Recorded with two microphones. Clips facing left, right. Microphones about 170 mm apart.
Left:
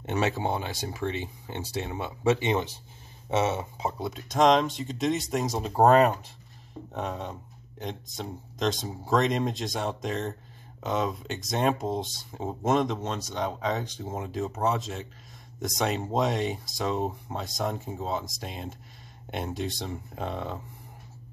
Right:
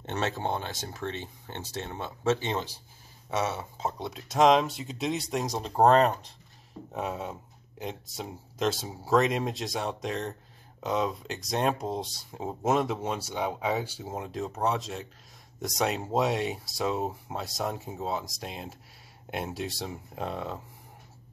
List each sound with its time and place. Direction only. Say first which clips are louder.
0.0 s speech: left 3 dB; 10° left (ahead or behind)
3.8 s speech: left 2 dB; centre (ahead or behind)
6.9 s speech: even; 5° right (ahead or behind)